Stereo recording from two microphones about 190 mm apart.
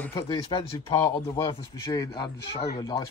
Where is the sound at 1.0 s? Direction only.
15° left (ahead or behind).